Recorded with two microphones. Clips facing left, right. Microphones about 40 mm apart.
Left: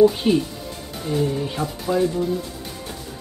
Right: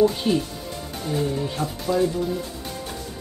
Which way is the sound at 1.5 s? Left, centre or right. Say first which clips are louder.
Left 1 dB; centre.